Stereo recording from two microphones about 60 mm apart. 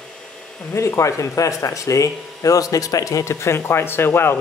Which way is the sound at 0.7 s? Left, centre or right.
Left.